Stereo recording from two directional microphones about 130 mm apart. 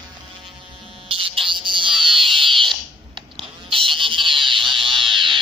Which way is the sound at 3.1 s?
45° right (ahead or behind).